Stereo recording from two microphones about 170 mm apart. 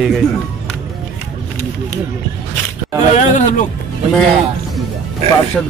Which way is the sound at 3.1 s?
45° left (ahead or behind).